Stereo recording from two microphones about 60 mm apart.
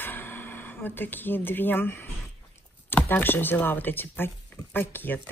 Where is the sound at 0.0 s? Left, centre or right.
Left.